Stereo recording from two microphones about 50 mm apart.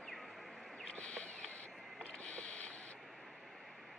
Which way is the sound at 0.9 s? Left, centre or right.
Left.